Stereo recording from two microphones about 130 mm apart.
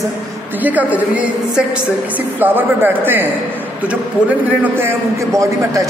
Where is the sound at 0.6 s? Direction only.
10° right (ahead or behind).